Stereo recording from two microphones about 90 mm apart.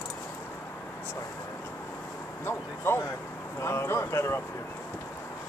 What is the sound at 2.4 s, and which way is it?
Speech, 25° left (ahead or behind).